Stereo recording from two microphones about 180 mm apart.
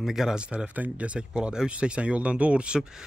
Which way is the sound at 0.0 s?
Centre (ahead or behind).